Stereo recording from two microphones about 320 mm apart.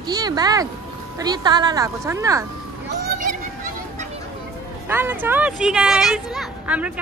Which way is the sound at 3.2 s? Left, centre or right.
Right.